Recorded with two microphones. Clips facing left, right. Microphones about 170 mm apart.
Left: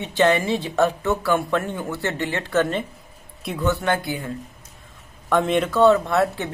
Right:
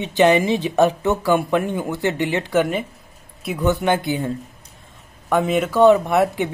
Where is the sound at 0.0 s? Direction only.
20° right (ahead or behind).